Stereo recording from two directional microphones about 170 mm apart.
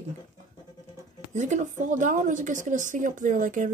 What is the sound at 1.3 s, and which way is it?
Speech, 45° right (ahead or behind).